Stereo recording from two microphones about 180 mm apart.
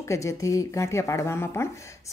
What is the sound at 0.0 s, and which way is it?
Speech, 15° left (ahead or behind).